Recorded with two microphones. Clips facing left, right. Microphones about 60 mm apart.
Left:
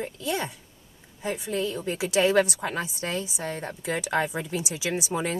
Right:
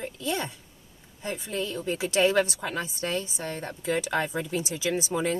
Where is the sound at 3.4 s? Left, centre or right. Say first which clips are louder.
Left 2 dB; centre.